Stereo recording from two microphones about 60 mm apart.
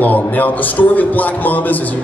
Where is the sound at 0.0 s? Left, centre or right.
Left.